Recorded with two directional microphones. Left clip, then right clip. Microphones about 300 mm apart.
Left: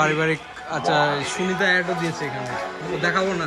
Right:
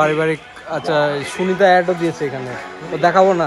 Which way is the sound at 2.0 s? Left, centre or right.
Right.